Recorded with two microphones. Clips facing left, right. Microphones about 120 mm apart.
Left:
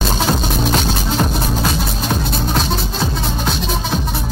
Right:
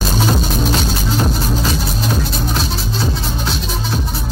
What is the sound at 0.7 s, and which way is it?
Music, 50° left (ahead or behind).